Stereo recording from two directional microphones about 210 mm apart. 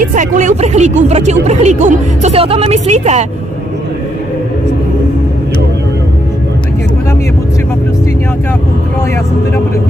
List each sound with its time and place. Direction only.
0.0 s speech: 35° right (ahead or behind)